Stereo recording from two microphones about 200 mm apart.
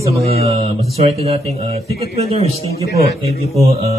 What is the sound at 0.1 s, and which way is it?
Speech, 30° right (ahead or behind).